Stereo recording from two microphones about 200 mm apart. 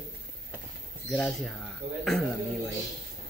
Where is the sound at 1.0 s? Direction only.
Centre (ahead or behind).